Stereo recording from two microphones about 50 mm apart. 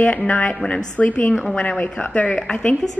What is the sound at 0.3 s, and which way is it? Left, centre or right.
A woman's voice, left.